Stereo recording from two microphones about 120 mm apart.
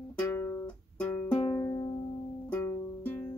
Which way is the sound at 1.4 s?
30° left (ahead or behind).